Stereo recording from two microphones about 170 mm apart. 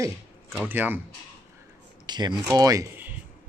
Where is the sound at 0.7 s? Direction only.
10° right (ahead or behind).